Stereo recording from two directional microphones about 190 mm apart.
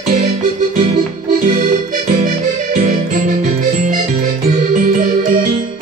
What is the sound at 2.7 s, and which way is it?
Music, 45° right (ahead or behind).